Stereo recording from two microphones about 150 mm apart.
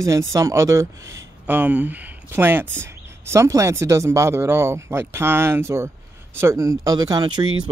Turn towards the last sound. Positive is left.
turn(degrees=-30)  # may be behind; listen again after turning